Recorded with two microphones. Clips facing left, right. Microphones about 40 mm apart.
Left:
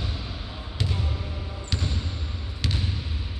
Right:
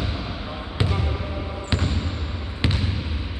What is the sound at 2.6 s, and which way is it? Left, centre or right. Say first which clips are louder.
Trickle: right 5 dB; right.